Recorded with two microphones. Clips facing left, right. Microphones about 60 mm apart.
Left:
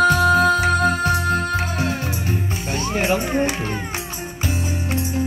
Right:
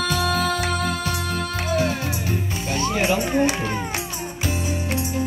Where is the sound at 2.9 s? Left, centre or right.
Left.